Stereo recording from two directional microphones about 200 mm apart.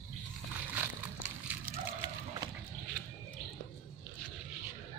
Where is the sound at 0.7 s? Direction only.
5° right (ahead or behind).